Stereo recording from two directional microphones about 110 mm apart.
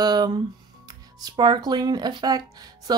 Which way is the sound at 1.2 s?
40° right (ahead or behind).